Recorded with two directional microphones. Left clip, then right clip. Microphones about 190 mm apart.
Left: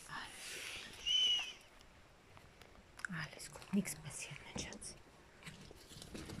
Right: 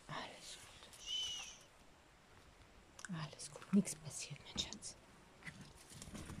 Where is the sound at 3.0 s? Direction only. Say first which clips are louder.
Left 5 dB; 15° right (ahead or behind).